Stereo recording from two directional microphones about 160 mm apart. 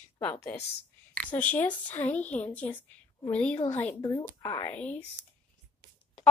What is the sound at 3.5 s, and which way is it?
Speech, 40° left (ahead or behind).